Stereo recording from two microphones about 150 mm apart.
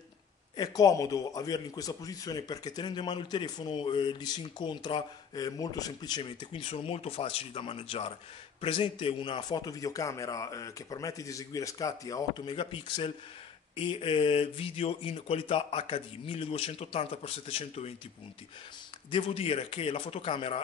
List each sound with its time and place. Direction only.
0.6 s a man's voice: 25° left (ahead or behind); by 17.9 s 40° left (ahead or behind)
19.0 s speech: 35° left (ahead or behind)